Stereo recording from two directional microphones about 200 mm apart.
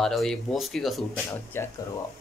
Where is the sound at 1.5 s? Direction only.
10° left (ahead or behind).